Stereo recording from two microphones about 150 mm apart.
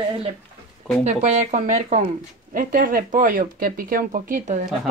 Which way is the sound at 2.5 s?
65° right (ahead or behind).